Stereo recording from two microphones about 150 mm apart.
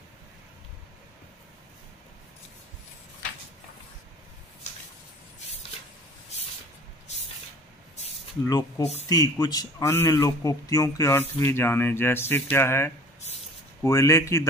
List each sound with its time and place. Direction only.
8.5 s a man's voice: 25° left (ahead or behind)